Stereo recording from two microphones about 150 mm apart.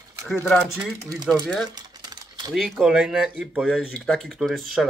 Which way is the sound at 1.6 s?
25° right (ahead or behind).